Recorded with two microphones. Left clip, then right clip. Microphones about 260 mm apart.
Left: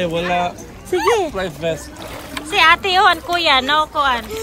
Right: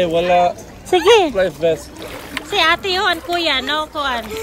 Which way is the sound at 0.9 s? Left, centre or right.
Right.